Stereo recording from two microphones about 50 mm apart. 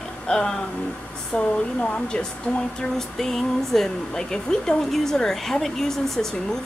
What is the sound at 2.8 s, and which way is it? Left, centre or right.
Speech, centre.